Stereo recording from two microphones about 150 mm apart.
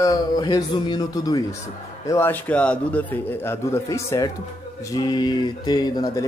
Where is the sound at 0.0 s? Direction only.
25° left (ahead or behind).